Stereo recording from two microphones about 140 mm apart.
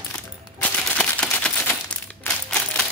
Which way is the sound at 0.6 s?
5° left (ahead or behind).